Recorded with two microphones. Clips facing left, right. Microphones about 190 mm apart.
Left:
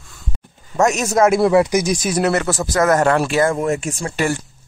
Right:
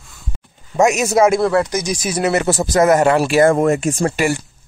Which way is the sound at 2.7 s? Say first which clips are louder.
Right 2 dB; 20° right (ahead or behind).